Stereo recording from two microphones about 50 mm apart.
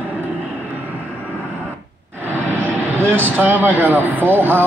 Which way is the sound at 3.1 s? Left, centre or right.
Right.